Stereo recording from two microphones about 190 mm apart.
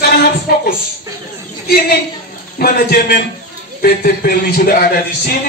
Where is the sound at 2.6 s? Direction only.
55° left (ahead or behind).